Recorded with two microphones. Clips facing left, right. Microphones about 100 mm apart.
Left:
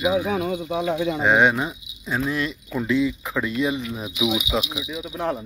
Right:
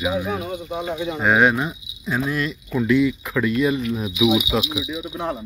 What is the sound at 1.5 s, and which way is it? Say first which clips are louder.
Speech: right 2 dB; centre (ahead or behind).